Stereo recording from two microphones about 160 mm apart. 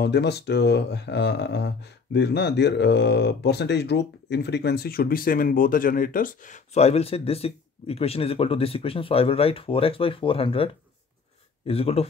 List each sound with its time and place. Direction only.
0.0 s speech: 90° left; by 12.1 s 40° left (ahead or behind)